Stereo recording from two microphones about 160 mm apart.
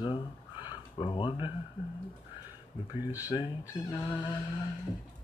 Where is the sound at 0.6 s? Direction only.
30° left (ahead or behind).